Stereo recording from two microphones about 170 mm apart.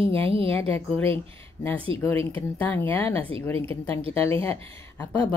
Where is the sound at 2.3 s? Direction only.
10° left (ahead or behind).